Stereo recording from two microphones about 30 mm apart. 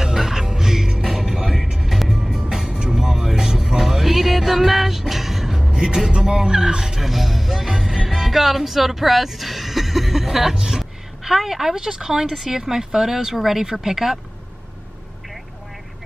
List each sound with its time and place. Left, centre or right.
0.0 s music: centre
5.7 s vehicle: right
7.0 s music: centre
10.5 s a sound: right
10.8 s a sound: centre
11.7 s speech: right